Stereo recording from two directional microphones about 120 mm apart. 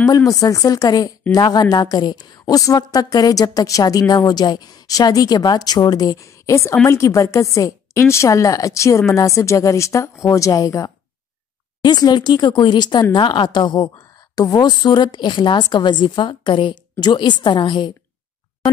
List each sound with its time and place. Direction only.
0.1 s a woman's voice: 30° left (ahead or behind)